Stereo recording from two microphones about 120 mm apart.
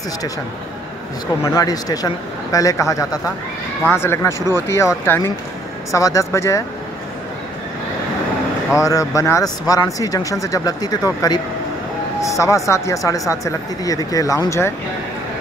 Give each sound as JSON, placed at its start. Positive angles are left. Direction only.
{"t": 1.4, "sound": "a man's voice", "side_deg": 30}
{"t": 8.7, "sound": "a man's voice", "side_deg": 25}